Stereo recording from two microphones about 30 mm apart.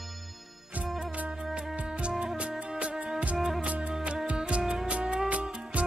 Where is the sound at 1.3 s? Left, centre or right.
Right.